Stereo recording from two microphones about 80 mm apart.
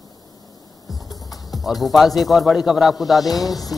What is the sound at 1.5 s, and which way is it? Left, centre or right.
Speech, centre.